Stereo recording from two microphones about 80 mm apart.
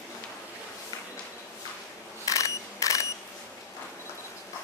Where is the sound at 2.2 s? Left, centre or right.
Left.